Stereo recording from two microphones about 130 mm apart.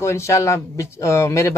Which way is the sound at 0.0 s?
20° left (ahead or behind).